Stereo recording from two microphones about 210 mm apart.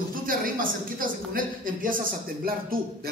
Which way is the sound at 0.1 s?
40° right (ahead or behind).